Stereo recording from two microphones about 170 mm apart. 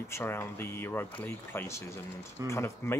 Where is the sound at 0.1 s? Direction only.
15° left (ahead or behind).